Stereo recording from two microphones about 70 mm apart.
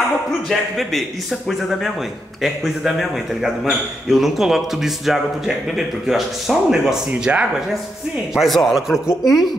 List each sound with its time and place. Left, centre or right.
0.5 s a man's voice: centre
2.4 s a man's voice: centre
7.1 s speech: centre
8.4 s a man's voice: centre